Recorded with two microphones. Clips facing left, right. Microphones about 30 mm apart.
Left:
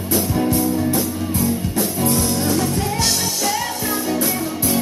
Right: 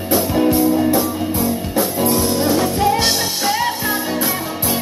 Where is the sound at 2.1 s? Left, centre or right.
Right.